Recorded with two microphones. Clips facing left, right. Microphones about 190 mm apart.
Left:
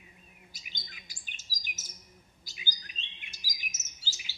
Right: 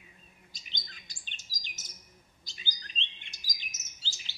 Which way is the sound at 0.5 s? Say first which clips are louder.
Right 2 dB; 5° left (ahead or behind).